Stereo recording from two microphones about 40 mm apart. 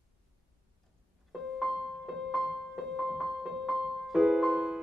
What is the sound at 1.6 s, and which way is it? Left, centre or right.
Music, centre.